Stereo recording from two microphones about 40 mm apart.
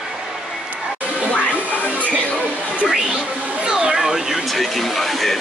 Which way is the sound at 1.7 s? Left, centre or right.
Left.